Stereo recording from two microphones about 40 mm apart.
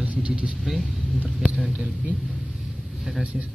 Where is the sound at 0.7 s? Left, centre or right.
Centre.